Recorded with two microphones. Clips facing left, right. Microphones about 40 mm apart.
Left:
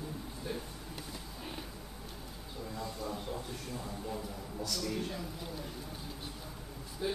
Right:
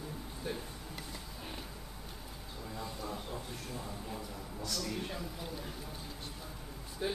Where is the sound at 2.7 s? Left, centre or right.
Centre.